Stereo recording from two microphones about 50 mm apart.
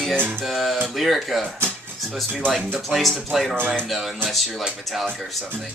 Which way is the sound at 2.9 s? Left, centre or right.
Centre.